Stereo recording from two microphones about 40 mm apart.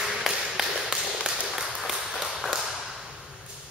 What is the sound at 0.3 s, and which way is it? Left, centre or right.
Tap, centre.